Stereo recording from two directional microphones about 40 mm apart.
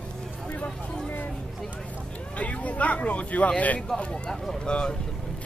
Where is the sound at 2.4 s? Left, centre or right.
Left.